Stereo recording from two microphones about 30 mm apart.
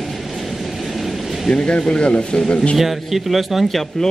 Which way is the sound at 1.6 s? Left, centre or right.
Left.